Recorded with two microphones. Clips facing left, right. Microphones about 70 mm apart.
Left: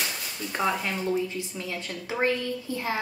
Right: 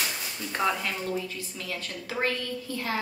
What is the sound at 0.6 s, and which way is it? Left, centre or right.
A woman's voice, centre.